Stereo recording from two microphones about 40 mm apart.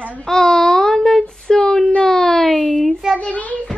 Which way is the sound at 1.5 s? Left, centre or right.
Left.